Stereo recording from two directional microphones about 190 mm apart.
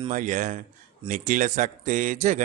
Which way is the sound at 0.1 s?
40° right (ahead or behind).